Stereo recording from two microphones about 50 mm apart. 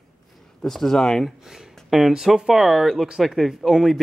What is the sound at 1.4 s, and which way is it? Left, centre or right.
Speech, centre.